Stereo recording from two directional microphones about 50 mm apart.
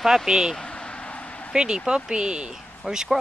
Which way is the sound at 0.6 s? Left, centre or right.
Centre.